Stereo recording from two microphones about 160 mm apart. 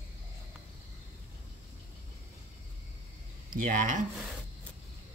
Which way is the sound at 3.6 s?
55° right (ahead or behind).